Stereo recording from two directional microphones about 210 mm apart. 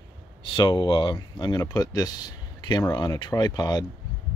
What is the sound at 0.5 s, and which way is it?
Speech, 20° left (ahead or behind).